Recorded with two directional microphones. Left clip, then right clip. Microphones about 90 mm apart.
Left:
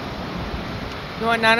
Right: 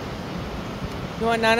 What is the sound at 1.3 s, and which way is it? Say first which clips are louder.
Speech: left 3 dB; 60° right (ahead or behind).